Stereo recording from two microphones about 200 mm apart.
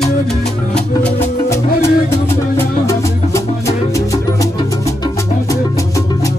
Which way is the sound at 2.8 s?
15° left (ahead or behind).